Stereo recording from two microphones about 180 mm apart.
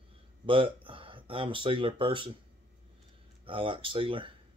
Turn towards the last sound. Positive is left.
turn(degrees=-30)  # may be behind; listen again after turning